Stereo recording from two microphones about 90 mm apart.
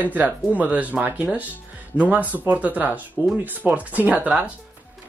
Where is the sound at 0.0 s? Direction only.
20° right (ahead or behind).